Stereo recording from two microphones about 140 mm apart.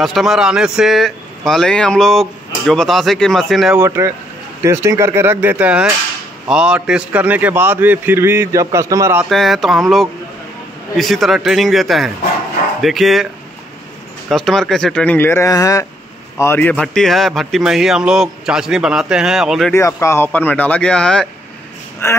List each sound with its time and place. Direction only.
0.0 s speech: centre (ahead or behind)
3.7 s a man's voice: 20° right (ahead or behind)
9.2 s speech: centre (ahead or behind)
14.3 s speech: 5° left (ahead or behind)
19.7 s speech: 20° left (ahead or behind); by 21.3 s 5° left (ahead or behind)